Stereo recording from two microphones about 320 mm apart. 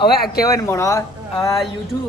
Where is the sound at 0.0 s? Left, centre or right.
Left.